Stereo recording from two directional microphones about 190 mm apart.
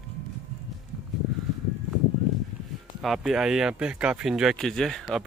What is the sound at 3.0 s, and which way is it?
Speech, centre (ahead or behind).